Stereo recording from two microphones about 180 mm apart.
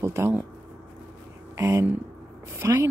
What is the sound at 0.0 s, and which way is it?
Speech, 15° right (ahead or behind).